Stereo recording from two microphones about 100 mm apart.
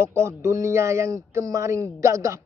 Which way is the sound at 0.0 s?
30° right (ahead or behind).